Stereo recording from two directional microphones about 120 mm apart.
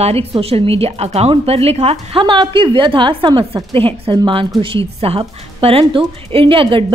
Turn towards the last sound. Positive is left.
turn(degrees=-45)  # may be behind; listen again after turning